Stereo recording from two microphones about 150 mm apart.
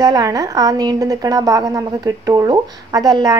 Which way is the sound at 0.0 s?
25° right (ahead or behind).